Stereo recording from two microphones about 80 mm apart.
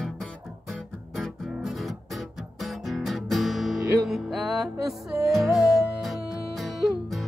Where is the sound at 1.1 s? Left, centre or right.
Centre.